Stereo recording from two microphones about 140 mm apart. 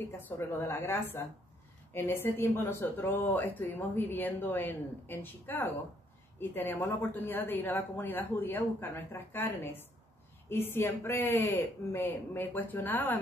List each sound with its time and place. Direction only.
0.4 s speech: 20° left (ahead or behind)